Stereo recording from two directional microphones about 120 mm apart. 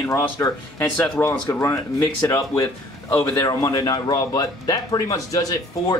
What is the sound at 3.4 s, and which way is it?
Speech, 25° left (ahead or behind).